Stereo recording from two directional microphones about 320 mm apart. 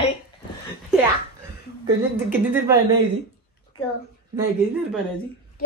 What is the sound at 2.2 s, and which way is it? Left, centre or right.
Speech, centre.